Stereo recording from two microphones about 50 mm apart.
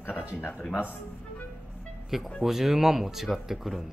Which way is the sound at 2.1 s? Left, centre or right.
Centre.